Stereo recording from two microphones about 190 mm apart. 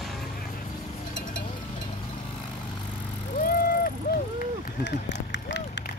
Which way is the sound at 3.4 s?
50° left (ahead or behind).